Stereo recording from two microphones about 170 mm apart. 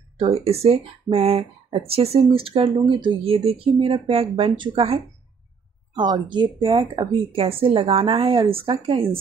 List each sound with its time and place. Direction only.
0.2 s speech: 35° right (ahead or behind)